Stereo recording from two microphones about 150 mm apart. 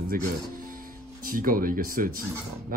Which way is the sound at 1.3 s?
70° right (ahead or behind).